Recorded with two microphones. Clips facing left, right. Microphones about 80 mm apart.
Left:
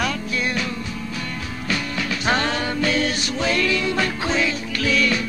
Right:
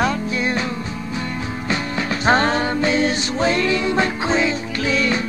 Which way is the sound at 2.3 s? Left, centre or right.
Right.